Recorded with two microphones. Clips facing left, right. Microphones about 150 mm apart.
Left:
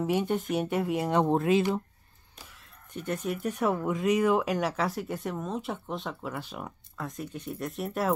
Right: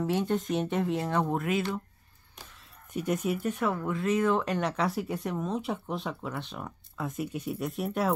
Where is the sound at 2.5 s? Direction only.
Centre (ahead or behind).